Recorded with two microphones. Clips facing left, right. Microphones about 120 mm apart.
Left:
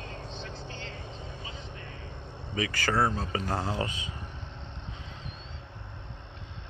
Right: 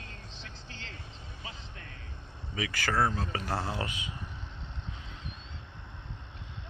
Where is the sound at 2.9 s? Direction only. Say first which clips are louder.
Left 1 dB; 5° left (ahead or behind).